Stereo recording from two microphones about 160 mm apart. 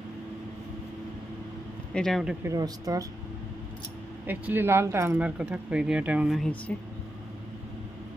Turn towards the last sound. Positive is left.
turn(degrees=5)  # may be behind; listen again after turning